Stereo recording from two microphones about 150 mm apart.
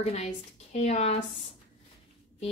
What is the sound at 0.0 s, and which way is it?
A woman's voice, 45° left (ahead or behind).